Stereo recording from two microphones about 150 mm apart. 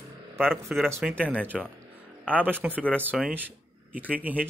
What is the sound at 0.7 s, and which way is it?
Speech, 10° right (ahead or behind).